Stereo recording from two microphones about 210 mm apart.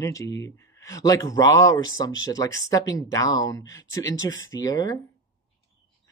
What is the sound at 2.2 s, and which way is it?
Speech, 15° left (ahead or behind).